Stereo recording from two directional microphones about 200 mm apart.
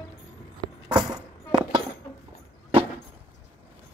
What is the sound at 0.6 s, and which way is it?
Keys jangling, 20° right (ahead or behind).